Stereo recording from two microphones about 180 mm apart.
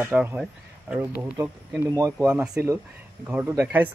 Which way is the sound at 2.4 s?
5° right (ahead or behind).